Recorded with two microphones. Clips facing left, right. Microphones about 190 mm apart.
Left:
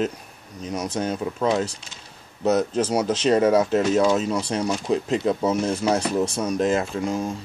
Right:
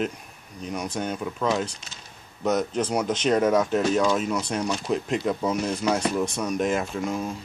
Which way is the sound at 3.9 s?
30° left (ahead or behind).